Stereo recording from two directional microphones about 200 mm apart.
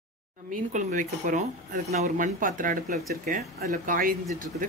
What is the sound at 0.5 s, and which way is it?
Speech, 40° right (ahead or behind).